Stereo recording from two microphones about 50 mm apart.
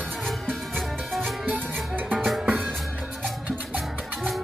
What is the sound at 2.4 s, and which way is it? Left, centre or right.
Music, centre.